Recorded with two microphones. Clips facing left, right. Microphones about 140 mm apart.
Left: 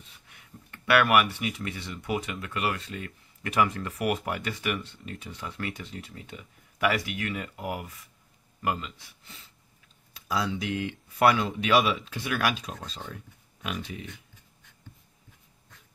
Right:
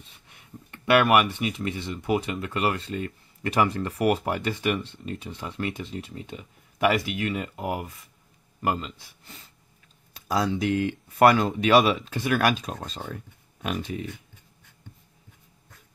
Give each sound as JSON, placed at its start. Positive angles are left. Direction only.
{"t": 0.3, "sound": "speech", "side_deg": -25}